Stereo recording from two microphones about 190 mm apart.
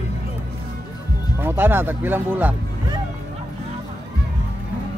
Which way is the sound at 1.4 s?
10° right (ahead or behind).